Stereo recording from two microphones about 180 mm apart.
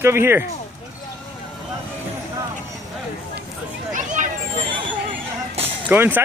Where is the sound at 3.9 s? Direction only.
45° right (ahead or behind).